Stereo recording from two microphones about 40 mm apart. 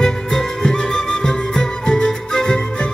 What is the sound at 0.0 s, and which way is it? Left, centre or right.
Music, centre.